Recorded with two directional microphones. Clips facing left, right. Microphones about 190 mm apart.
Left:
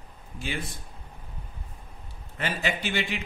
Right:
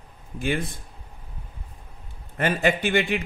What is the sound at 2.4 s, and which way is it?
Speech, 50° right (ahead or behind).